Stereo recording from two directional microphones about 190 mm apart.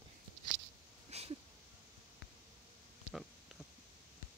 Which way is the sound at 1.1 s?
35° right (ahead or behind).